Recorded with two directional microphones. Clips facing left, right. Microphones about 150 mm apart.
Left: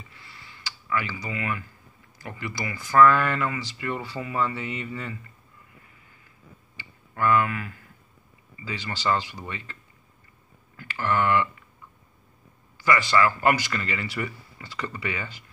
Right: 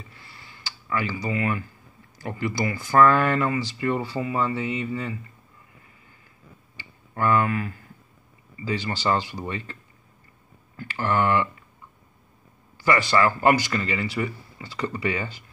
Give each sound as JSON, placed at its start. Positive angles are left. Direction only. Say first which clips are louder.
{"t": 0.7, "sound": "speech", "louder": "right 2 dB", "side_deg": -30}
{"t": 7.2, "sound": "speech", "louder": "right 1 dB", "side_deg": -30}
{"t": 10.8, "sound": "speech", "louder": "right 2 dB", "side_deg": -30}
{"t": 12.7, "sound": "a sound", "louder": "right 1 dB", "side_deg": -30}
{"t": 13.0, "sound": "speech", "louder": "right 2 dB", "side_deg": -20}